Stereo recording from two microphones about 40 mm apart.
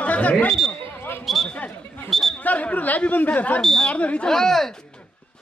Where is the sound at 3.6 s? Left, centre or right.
Centre.